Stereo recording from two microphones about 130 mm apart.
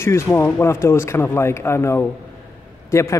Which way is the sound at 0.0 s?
20° left (ahead or behind).